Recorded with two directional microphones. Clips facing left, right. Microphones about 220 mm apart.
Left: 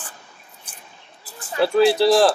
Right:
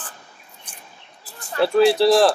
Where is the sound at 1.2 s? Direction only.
Centre (ahead or behind).